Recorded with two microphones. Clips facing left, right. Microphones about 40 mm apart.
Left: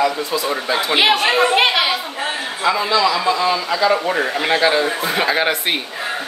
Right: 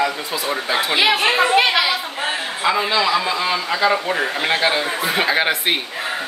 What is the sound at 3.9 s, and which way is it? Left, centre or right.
Speech, centre.